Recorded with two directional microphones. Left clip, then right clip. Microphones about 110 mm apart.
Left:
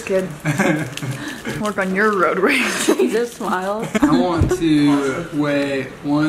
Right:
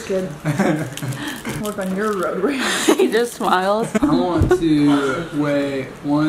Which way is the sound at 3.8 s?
5° left (ahead or behind).